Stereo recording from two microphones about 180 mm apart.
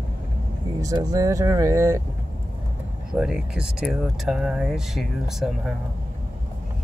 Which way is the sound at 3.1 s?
5° right (ahead or behind).